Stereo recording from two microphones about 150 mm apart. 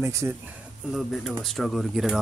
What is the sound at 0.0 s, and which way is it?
Speech, 20° right (ahead or behind).